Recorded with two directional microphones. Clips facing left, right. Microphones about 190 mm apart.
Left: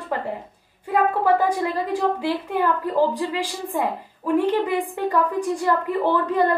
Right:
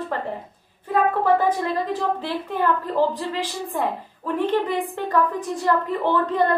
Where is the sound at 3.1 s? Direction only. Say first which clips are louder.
Left 2 dB; 10° left (ahead or behind).